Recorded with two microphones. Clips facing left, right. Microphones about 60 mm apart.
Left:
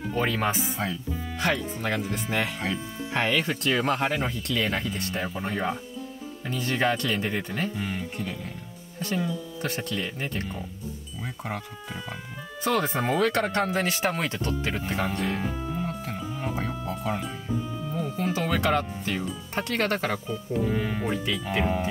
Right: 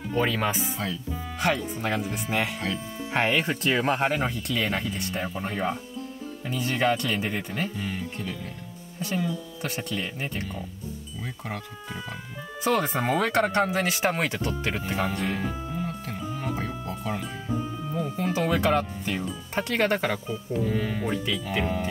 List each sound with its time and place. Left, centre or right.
0.3 s speech: left
1.1 s speech: centre
3.3 s speech: right
4.1 s speech: centre
7.7 s speech: centre
9.0 s speech: centre
12.6 s speech: centre
14.1 s speech: right
14.8 s speech: centre
20.6 s speech: centre
21.0 s speech: centre